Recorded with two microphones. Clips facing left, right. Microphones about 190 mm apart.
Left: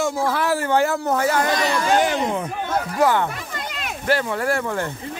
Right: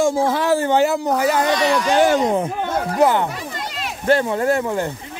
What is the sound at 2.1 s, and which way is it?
Speech, 45° right (ahead or behind).